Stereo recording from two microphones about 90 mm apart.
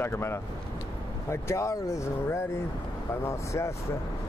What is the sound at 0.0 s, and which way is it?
Speech, 25° left (ahead or behind).